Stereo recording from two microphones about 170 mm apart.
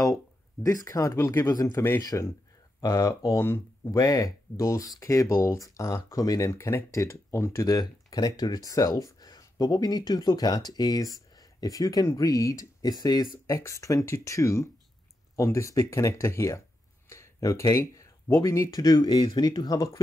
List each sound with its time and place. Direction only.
0.6 s speech: 20° left (ahead or behind)
17.1 s a sound: 20° left (ahead or behind)
17.9 s speech: 20° left (ahead or behind)